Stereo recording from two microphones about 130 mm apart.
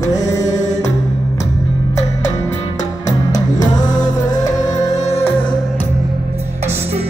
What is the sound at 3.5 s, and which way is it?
Music, 30° left (ahead or behind).